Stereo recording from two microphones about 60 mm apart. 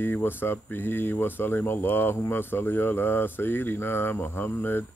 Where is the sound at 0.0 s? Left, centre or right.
Left.